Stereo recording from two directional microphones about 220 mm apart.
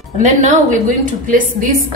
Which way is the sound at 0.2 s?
35° right (ahead or behind).